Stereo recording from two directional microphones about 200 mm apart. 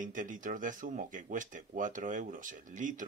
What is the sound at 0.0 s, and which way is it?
Speech, 40° right (ahead or behind).